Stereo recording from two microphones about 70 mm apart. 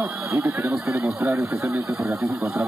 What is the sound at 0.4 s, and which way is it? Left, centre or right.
Speech, right.